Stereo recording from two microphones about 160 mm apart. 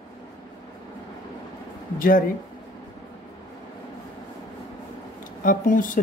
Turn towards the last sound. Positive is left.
turn(degrees=55)  # may be behind; listen again after turning